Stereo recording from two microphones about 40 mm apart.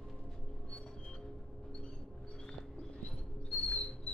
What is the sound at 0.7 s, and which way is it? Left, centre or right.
Music, left.